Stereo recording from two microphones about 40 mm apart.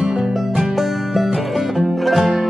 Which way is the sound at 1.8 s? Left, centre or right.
Centre.